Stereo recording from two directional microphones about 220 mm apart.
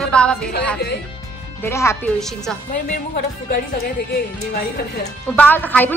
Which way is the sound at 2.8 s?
40° left (ahead or behind).